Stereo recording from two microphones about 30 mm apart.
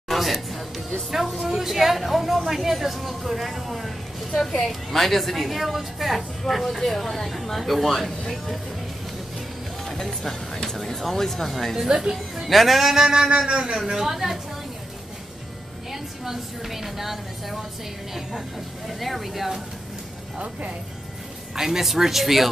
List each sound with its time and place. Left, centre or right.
0.1 s music: centre
1.1 s a sound: centre
1.4 s a woman's voice: centre
9.8 s speech: centre
11.9 s speech: centre
12.4 s a woman's voice: centre
13.5 s a man's voice: right
13.9 s speech: centre
15.9 s a woman's voice: centre
18.9 s a woman's voice: centre
21.5 s speech: centre